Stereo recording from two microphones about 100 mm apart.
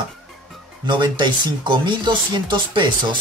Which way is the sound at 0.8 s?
50° right (ahead or behind).